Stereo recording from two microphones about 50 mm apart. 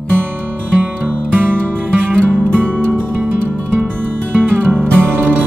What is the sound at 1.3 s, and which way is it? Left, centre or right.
Music, right.